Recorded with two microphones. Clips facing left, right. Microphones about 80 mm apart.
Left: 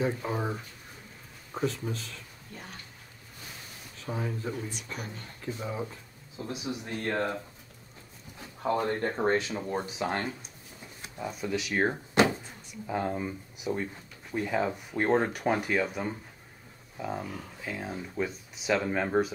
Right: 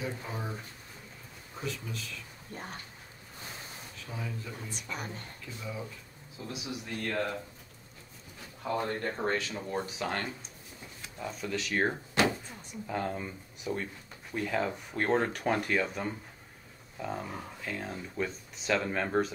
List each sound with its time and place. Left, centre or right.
0.0 s speech: left
2.5 s speech: right
4.0 s speech: left
4.9 s speech: right
5.4 s speech: left
8.6 s speech: left
11.2 s speech: centre